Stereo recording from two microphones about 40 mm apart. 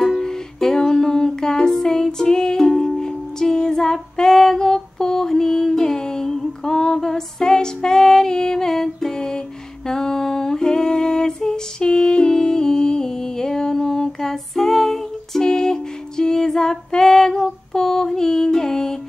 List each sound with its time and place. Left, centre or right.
0.2 s music: centre
9.8 s humming: centre
17.7 s mantra: centre